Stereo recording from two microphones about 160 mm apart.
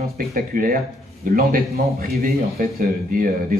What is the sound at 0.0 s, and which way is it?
A man's voice, 70° right (ahead or behind).